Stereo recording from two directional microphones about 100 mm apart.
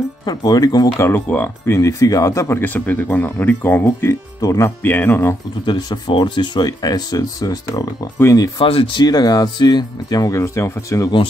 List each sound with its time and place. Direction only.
0.2 s speech: 45° left (ahead or behind)
0.9 s speech: 25° left (ahead or behind)
1.7 s speech: 35° left (ahead or behind)
5.7 s speech: 45° left (ahead or behind)
8.5 s speech: 65° left (ahead or behind); by 10.4 s 40° left (ahead or behind)
10.4 s speech: 30° left (ahead or behind)